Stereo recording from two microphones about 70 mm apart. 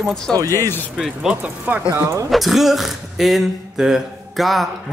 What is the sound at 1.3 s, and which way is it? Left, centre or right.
Speech, right.